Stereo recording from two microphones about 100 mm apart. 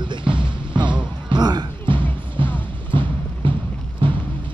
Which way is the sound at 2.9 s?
55° right (ahead or behind).